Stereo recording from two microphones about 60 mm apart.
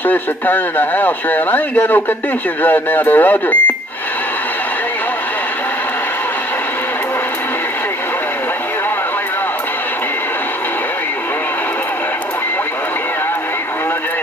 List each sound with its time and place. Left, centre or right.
0.0 s speech: left